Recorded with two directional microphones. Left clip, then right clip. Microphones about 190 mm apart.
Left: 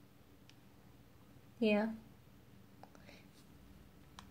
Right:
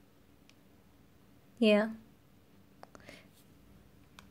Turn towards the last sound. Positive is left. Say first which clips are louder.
# right 6 dB
turn(degrees=-50)  # may be behind; listen again after turning